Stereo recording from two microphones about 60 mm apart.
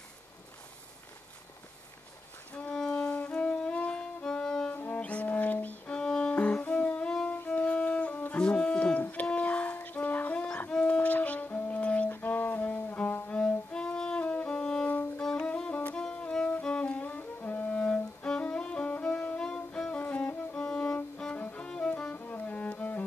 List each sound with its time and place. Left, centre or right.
2.9 s music: left
4.7 s brass instrument: left
5.9 s music: centre
8.4 s a sound: centre
9.0 s music: left
20.5 s violin: centre
21.5 s music: centre